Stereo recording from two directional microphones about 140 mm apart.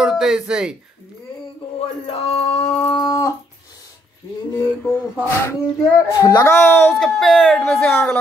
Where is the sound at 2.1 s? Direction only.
45° left (ahead or behind).